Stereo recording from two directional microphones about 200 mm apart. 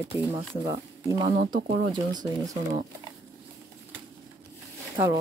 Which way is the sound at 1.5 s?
20° right (ahead or behind).